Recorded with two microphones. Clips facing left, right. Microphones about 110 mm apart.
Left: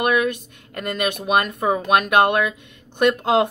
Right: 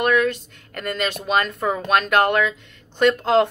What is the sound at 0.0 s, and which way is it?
Speech, 15° left (ahead or behind).